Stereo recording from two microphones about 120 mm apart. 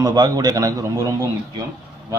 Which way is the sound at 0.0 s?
35° right (ahead or behind).